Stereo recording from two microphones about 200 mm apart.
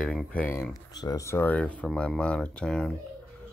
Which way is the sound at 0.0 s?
5° left (ahead or behind).